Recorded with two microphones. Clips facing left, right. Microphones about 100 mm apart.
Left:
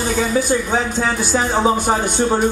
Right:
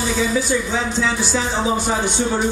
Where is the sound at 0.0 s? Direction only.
50° left (ahead or behind).